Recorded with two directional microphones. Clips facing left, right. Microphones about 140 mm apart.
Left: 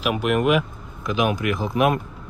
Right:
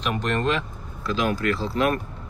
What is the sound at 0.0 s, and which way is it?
Speech, 10° left (ahead or behind).